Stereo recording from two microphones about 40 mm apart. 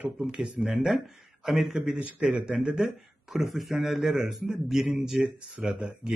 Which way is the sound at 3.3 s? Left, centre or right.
Centre.